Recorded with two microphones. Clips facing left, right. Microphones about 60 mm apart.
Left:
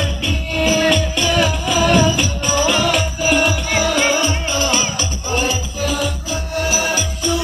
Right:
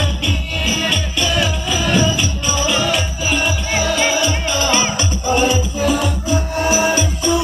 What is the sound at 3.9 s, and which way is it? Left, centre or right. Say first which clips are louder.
Music: right 1 dB; left.